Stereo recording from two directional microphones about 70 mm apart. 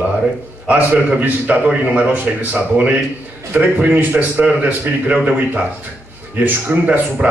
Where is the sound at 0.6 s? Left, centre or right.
Right.